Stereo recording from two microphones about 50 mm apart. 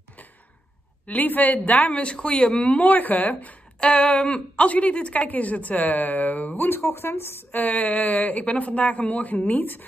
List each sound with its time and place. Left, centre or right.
1.0 s a woman's voice: left
3.8 s a woman's voice: left
6.8 s speech: left
7.5 s a woman's voice: left